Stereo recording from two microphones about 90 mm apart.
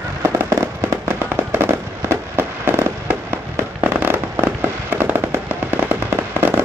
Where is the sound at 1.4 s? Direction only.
25° right (ahead or behind).